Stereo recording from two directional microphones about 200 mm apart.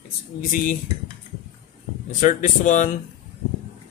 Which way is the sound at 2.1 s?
40° left (ahead or behind).